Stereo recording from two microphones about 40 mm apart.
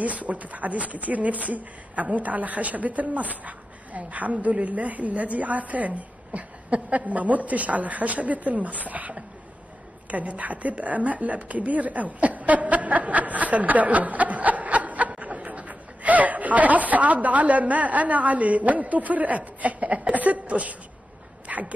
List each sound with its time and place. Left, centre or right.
0.0 s a woman's voice: right
21.5 s dog: right